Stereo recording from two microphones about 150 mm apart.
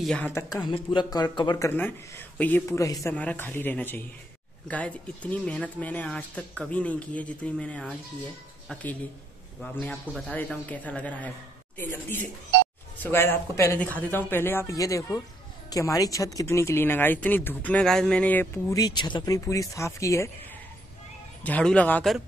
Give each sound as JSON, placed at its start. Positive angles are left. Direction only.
{"t": 0.0, "sound": "speech", "side_deg": 5}
{"t": 0.3, "sound": "speech", "side_deg": 20}
{"t": 1.7, "sound": "speech", "side_deg": 15}
{"t": 3.2, "sound": "speech", "side_deg": 10}
{"t": 9.6, "sound": "a man's voice", "side_deg": 5}
{"t": 18.8, "sound": "speech", "side_deg": 30}
{"t": 21.4, "sound": "speech", "side_deg": 10}